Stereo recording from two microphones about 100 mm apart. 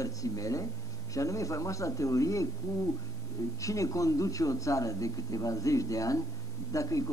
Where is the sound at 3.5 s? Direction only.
35° left (ahead or behind).